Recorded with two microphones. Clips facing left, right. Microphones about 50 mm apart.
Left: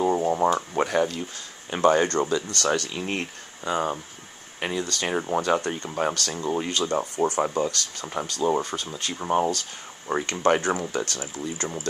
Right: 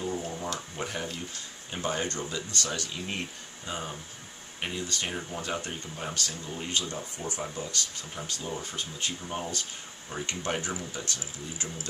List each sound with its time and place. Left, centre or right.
0.0 s a sound: left
0.6 s speech: left
1.7 s speech: left
5.2 s speech: left
10.2 s speech: left